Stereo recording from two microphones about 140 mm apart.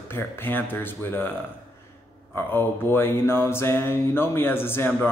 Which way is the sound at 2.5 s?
15° left (ahead or behind).